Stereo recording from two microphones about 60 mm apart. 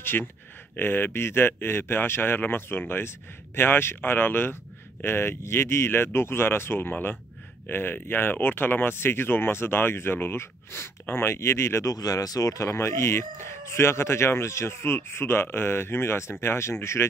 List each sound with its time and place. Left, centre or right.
0.1 s speech: left
0.7 s speech: left
11.8 s speech: left
12.6 s speech: left